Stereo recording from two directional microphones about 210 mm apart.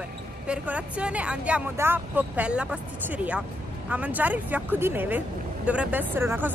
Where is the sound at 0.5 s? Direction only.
5° right (ahead or behind).